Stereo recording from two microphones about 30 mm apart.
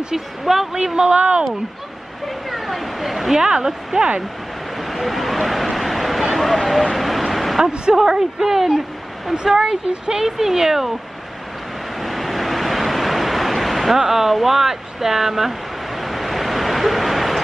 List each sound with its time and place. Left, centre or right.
0.1 s speech: centre
0.7 s speech: right
1.0 s speech: right
2.2 s speech: centre
3.3 s speech: right
4.7 s vehicle: centre
7.7 s speech: right
8.0 s speech: centre
9.3 s speech: right
12.0 s waves: centre
13.9 s speech: centre
14.3 s vehicle: centre